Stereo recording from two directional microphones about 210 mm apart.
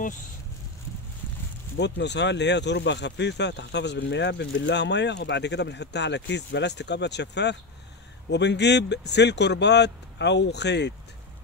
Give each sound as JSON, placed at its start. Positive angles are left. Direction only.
{"t": 1.8, "sound": "speech", "side_deg": 55}